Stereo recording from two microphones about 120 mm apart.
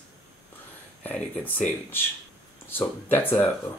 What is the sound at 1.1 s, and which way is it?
Speech, 15° left (ahead or behind).